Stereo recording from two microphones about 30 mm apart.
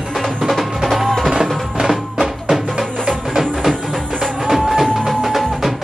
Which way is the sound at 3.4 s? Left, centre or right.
Centre.